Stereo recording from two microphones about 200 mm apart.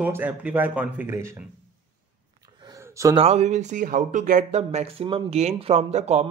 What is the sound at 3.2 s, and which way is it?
A man's voice, 35° right (ahead or behind).